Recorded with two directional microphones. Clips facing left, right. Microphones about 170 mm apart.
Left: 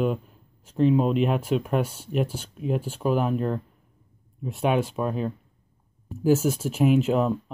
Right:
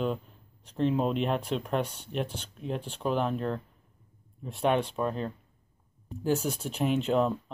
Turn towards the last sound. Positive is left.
turn(degrees=5)  # may be behind; listen again after turning